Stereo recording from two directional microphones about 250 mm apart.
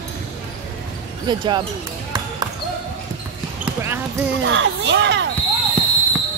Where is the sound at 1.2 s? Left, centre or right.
Centre.